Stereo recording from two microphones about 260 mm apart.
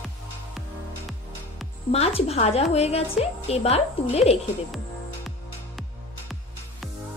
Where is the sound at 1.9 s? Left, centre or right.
Left.